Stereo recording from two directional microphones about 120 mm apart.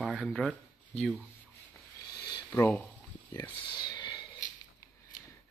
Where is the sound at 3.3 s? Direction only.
30° left (ahead or behind).